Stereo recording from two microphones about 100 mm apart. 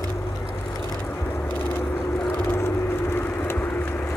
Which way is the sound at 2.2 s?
20° left (ahead or behind).